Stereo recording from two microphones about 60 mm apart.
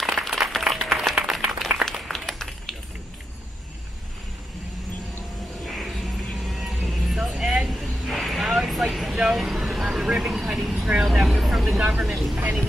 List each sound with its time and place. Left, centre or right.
0.0 s applause: centre
1.9 s a sound: centre
5.7 s music: centre
6.9 s vehicle: centre
10.9 s speech: right
11.2 s vehicle: centre
11.8 s vehicle: centre
12.1 s speech: centre
12.4 s speech: right